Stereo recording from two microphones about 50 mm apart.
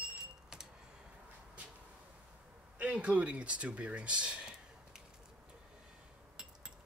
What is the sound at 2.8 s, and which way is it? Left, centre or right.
Speech, right.